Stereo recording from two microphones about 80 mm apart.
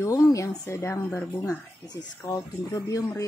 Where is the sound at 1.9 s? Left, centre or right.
Left.